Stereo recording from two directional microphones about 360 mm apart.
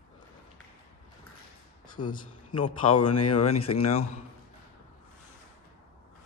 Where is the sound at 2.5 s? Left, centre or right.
Left.